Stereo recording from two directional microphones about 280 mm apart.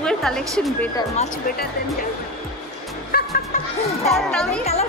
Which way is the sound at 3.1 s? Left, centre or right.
Left.